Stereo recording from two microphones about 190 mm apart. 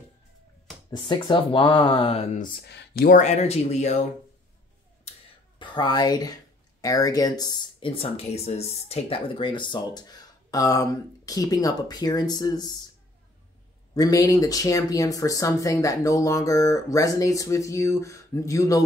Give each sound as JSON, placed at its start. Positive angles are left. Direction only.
{"t": 0.9, "sound": "speech", "side_deg": 25}
{"t": 2.7, "sound": "speech", "side_deg": 55}
{"t": 3.2, "sound": "speech", "side_deg": 35}
{"t": 5.6, "sound": "speech", "side_deg": 25}
{"t": 13.9, "sound": "speech", "side_deg": 20}